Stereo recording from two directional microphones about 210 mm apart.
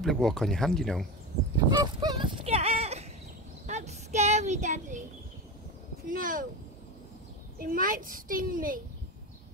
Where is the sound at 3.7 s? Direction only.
35° right (ahead or behind).